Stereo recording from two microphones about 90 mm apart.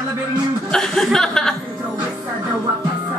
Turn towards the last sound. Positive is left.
turn(degrees=5)  # may be behind; listen again after turning